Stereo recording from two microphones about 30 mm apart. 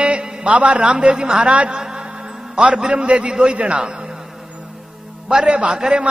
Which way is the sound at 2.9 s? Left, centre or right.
Right.